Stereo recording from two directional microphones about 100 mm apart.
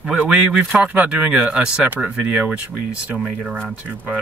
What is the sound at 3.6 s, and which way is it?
Speech, 10° left (ahead or behind).